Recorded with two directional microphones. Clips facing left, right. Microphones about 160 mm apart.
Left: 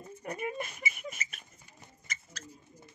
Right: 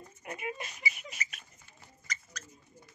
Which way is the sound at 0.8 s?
20° left (ahead or behind).